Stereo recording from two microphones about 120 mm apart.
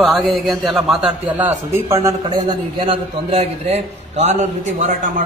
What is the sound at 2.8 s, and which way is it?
A man's voice, 50° right (ahead or behind).